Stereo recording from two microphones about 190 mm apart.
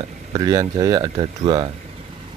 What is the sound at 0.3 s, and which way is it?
Speech, 15° right (ahead or behind).